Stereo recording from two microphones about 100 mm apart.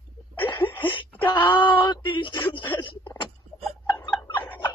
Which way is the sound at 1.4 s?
55° left (ahead or behind).